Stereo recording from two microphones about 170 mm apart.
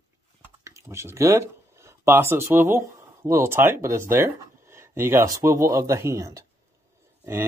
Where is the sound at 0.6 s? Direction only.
15° right (ahead or behind).